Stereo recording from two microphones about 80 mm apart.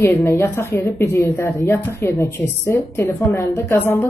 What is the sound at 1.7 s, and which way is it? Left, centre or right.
Speech, left.